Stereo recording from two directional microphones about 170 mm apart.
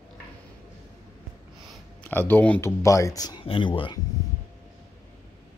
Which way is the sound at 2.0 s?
10° left (ahead or behind).